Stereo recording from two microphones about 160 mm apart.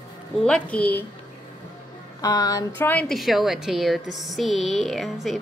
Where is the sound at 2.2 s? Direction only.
25° left (ahead or behind).